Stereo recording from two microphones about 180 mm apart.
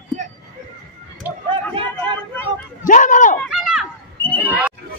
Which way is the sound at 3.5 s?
Centre (ahead or behind).